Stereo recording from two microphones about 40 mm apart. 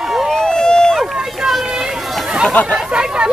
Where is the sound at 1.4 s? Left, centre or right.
Centre.